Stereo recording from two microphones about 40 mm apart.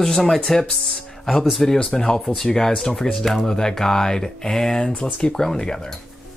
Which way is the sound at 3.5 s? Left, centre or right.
Centre.